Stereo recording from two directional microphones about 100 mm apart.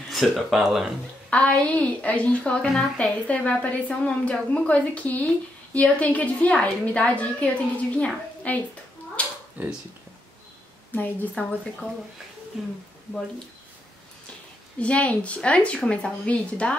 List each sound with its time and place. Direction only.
0.1 s speech: centre (ahead or behind)
1.3 s a woman's voice: 15° left (ahead or behind)
9.2 s cat: 10° left (ahead or behind)
9.6 s speech: 15° right (ahead or behind)
11.0 s a woman's voice: 15° left (ahead or behind)
12.6 s speech: centre (ahead or behind)
14.8 s a woman's voice: 15° left (ahead or behind)